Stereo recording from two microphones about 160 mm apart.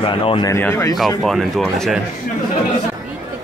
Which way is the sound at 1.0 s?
Centre (ahead or behind).